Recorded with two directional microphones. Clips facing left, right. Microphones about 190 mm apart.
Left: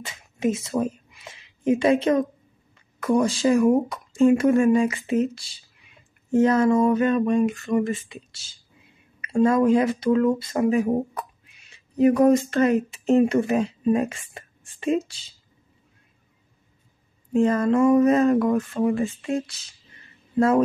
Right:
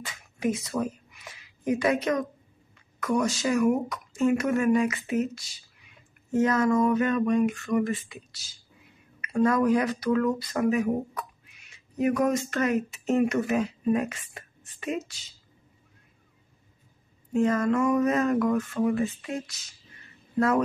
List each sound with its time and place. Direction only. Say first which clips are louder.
0.0 s speech: left 4 dB; 25° left (ahead or behind)
17.3 s speech: left 4 dB; 30° left (ahead or behind)